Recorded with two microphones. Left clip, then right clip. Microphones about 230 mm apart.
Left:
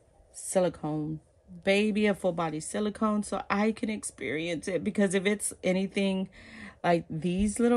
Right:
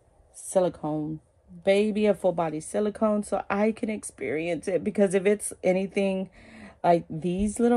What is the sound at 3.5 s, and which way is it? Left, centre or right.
Speech, centre.